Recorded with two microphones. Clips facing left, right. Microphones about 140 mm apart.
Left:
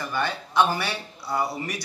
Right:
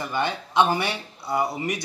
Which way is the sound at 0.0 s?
20° right (ahead or behind).